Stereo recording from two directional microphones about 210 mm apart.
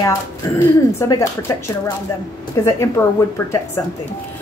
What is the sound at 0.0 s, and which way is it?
Speech, 15° left (ahead or behind).